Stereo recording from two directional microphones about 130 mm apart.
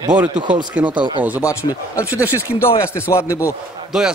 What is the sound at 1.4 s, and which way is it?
Speech, 20° left (ahead or behind).